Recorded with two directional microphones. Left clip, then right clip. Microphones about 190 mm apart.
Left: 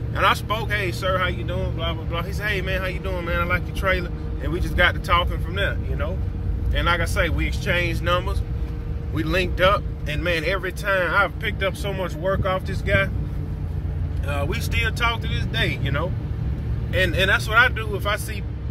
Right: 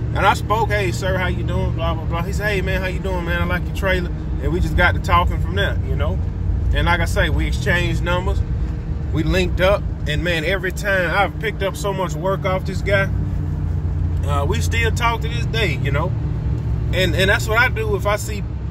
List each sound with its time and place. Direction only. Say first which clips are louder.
0.1 s speech: right 3 dB; 10° right (ahead or behind)
14.5 s speech: right 4 dB; 15° right (ahead or behind)